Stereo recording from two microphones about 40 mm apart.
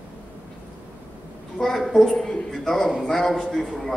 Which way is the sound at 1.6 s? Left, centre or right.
Centre.